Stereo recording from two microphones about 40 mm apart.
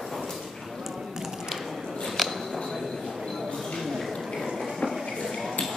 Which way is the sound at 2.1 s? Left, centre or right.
Centre.